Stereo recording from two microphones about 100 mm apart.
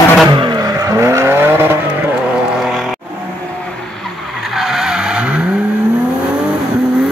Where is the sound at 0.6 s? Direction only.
35° right (ahead or behind).